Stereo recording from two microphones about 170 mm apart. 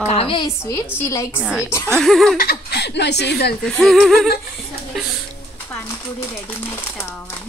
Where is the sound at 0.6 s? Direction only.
15° left (ahead or behind).